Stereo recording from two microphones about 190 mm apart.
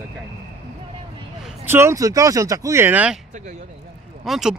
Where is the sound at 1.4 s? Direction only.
10° right (ahead or behind).